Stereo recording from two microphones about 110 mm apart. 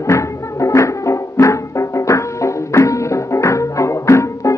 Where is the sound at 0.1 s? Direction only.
25° left (ahead or behind).